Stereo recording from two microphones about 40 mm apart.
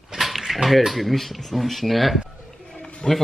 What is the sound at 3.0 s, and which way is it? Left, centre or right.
Speech, left.